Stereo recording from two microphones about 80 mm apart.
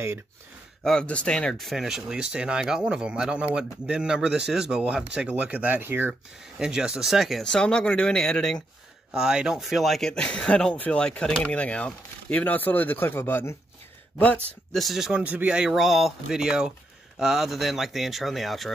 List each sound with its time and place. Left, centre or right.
0.8 s speech: centre; by 6.1 s right
6.4 s speech: centre
9.1 s speech: centre; by 13.6 s left
14.1 s speech: centre
14.7 s speech: centre